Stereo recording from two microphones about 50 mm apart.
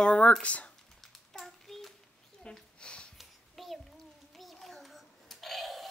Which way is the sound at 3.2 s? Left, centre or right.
Centre.